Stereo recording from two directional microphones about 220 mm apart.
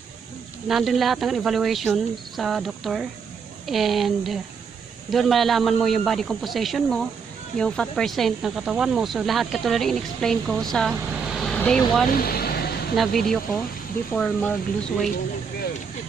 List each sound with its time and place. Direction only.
0.7 s speech: centre (ahead or behind)
12.2 s vehicle: 45° left (ahead or behind)
12.9 s speech: centre (ahead or behind)